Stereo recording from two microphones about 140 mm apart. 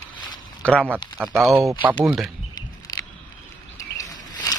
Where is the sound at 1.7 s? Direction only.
20° right (ahead or behind).